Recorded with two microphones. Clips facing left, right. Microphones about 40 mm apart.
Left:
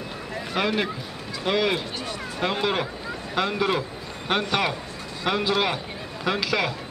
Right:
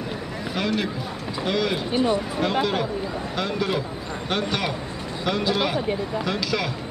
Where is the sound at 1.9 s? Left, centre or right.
Right.